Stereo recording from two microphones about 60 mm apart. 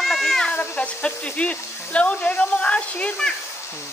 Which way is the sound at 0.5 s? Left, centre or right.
Left.